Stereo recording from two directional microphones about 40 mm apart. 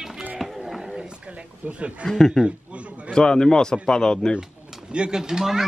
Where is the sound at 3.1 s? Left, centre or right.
Centre.